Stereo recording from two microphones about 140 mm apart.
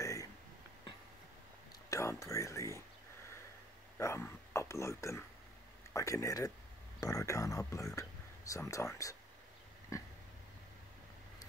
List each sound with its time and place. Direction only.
0.0 s a sound: 25° left (ahead or behind)
1.9 s speech: 20° left (ahead or behind)
4.0 s speech: 20° left (ahead or behind)